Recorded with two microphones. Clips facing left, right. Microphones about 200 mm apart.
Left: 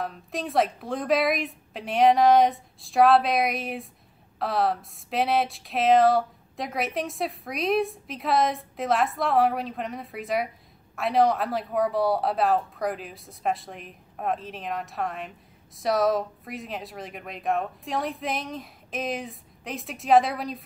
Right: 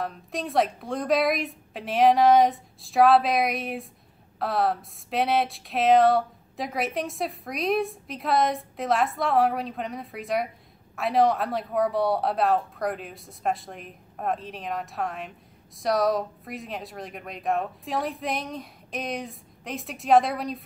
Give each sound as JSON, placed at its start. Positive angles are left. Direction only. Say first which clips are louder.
{"t": 0.0, "sound": "speech", "louder": "even", "side_deg": 0}